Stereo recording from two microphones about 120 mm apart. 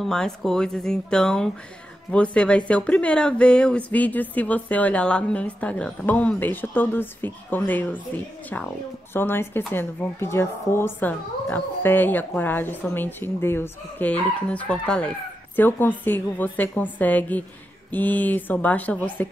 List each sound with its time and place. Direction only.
0.0 s a woman's voice: 5° left (ahead or behind)
9.1 s a woman's voice: 20° left (ahead or behind)